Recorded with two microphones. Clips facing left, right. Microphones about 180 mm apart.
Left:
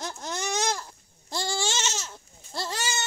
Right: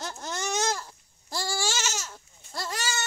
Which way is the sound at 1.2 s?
20° left (ahead or behind).